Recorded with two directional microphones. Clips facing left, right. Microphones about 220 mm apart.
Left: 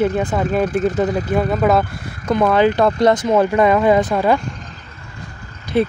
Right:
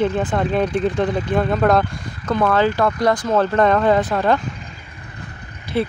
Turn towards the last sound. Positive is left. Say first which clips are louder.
# left 4 dB
turn(degrees=15)  # may be behind; listen again after turning